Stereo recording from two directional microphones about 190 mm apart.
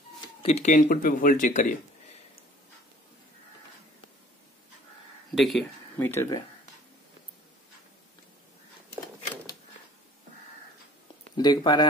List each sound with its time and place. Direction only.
0.4 s speech: 35° left (ahead or behind)
5.3 s speech: centre (ahead or behind)
5.9 s speech: 15° left (ahead or behind)
11.3 s speech: 20° left (ahead or behind)